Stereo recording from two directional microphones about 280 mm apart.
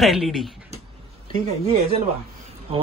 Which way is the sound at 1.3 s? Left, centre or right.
Right.